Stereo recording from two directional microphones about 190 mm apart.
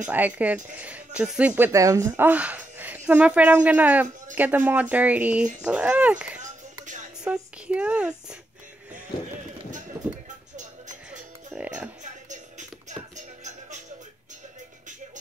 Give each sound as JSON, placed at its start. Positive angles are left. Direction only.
{"t": 0.0, "sound": "speech", "side_deg": -10}
{"t": 10.5, "sound": "music", "side_deg": -40}
{"t": 11.1, "sound": "music", "side_deg": -5}
{"t": 12.0, "sound": "music", "side_deg": -40}